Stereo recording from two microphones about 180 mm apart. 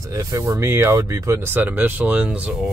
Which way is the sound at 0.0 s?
20° right (ahead or behind).